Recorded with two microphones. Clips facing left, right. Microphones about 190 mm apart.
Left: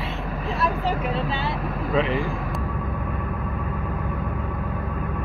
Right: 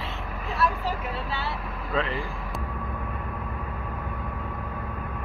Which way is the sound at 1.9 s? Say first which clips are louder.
Left 5 dB; 15° left (ahead or behind).